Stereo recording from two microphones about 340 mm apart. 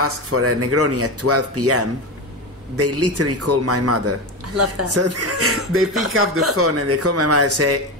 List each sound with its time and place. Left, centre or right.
0.0 s speech: right